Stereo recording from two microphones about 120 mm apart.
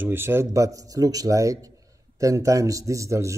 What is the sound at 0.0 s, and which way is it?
Speech, 20° right (ahead or behind).